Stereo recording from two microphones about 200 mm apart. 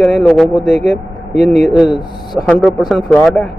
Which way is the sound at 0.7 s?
50° left (ahead or behind).